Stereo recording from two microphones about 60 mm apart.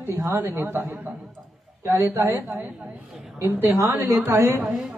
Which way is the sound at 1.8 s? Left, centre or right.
Right.